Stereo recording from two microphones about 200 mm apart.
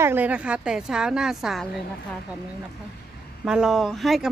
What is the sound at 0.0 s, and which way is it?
Speech, 10° right (ahead or behind).